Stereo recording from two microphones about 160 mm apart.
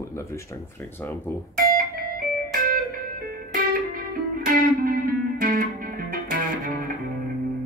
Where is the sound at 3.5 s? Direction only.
65° right (ahead or behind).